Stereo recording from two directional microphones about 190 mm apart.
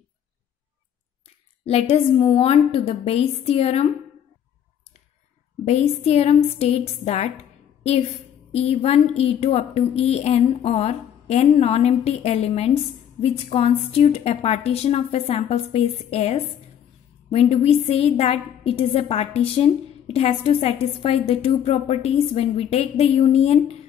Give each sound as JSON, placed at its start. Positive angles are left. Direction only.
{"t": 1.7, "sound": "a woman's voice", "side_deg": 30}
{"t": 5.7, "sound": "a woman's voice", "side_deg": 35}
{"t": 8.5, "sound": "a woman's voice", "side_deg": 35}